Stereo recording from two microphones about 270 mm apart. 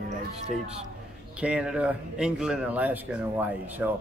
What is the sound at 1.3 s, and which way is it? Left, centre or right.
Speech, centre.